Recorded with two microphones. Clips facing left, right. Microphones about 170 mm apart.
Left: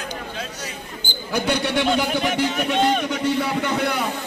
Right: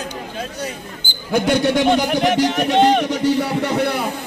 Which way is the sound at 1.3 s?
45° right (ahead or behind).